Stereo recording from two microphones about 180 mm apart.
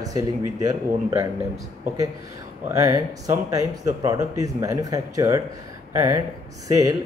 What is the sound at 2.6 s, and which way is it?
Speech, 20° right (ahead or behind).